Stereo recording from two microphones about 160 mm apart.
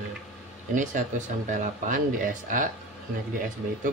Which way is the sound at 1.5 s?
55° right (ahead or behind).